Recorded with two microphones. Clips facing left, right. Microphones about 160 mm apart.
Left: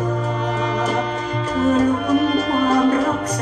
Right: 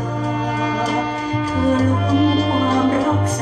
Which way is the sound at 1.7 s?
30° right (ahead or behind).